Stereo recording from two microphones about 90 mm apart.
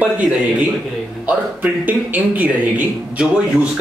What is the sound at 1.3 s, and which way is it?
A man's voice, 20° right (ahead or behind).